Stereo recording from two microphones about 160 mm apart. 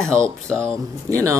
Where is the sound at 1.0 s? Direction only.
20° right (ahead or behind).